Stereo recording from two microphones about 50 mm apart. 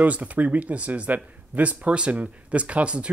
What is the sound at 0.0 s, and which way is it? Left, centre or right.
Speech, right.